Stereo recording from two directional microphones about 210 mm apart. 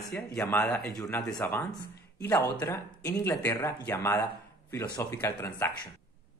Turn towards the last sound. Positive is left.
turn(degrees=15)  # may be behind; listen again after turning